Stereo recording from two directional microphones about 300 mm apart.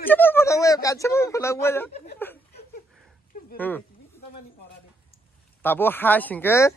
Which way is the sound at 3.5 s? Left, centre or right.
Centre.